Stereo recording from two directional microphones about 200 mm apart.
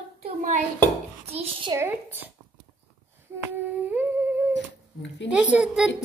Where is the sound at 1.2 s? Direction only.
30° right (ahead or behind).